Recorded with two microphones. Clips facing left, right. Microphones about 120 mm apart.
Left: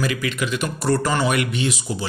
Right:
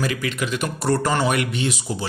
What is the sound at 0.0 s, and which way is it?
Speech, 40° right (ahead or behind).